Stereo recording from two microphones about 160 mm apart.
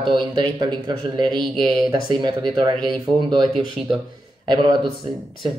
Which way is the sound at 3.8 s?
Centre (ahead or behind).